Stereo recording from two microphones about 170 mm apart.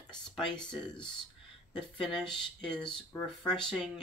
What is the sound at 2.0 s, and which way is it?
Speech, centre (ahead or behind).